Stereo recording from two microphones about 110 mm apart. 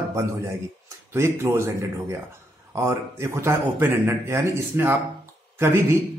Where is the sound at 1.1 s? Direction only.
25° right (ahead or behind).